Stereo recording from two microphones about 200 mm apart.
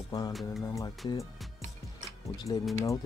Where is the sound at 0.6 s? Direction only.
15° left (ahead or behind).